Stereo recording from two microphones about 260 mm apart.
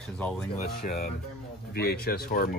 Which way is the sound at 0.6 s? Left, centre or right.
Left.